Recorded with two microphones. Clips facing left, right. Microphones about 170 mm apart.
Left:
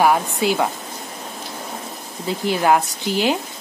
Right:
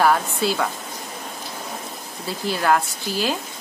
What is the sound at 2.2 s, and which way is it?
Speech, 20° left (ahead or behind).